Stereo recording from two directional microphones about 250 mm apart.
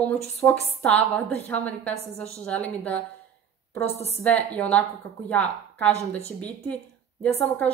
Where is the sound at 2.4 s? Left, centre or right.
Centre.